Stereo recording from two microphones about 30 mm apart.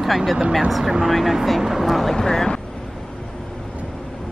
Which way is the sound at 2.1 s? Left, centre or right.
Centre.